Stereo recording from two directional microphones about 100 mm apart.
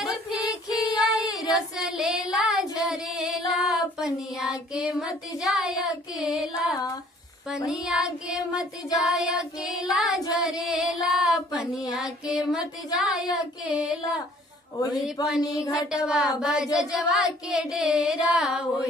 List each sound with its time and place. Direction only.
0.0 s a sound: 5° right (ahead or behind)
1.1 s child singing: 40° left (ahead or behind)
1.8 s child singing: 5° right (ahead or behind)
15.2 s a sound: 40° left (ahead or behind)
15.9 s speech: 5° right (ahead or behind)
16.3 s child singing: 5° right (ahead or behind)